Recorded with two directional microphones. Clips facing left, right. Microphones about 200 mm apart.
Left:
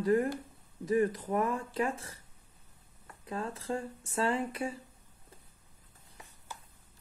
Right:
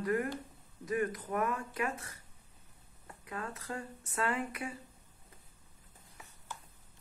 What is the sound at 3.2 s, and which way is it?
Speech, 30° left (ahead or behind).